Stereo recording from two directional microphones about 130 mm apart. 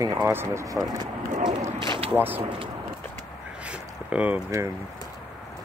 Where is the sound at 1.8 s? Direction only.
40° right (ahead or behind).